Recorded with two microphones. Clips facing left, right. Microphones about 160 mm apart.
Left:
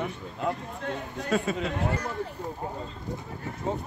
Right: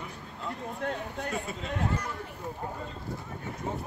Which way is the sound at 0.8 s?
55° right (ahead or behind).